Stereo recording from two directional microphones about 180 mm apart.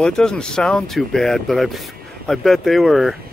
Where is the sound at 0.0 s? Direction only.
5° left (ahead or behind).